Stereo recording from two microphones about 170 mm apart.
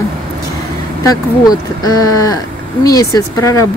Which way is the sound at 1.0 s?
20° left (ahead or behind).